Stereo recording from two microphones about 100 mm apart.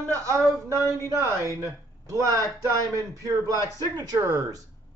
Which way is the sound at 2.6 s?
35° right (ahead or behind).